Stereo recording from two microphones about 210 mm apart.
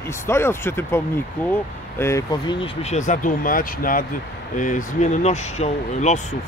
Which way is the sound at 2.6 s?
30° left (ahead or behind).